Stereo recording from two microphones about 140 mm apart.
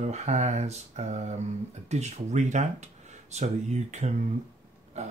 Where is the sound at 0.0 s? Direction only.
50° right (ahead or behind).